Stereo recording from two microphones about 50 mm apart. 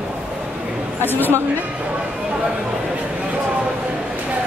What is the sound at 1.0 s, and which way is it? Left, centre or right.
Speech, left.